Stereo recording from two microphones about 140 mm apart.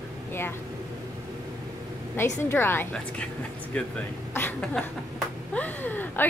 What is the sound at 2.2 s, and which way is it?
A woman's voice, 15° left (ahead or behind).